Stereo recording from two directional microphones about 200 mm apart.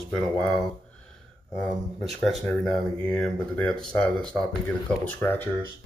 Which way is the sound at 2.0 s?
Centre (ahead or behind).